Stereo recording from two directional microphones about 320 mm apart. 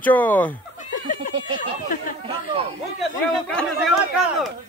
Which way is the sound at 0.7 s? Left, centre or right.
Left.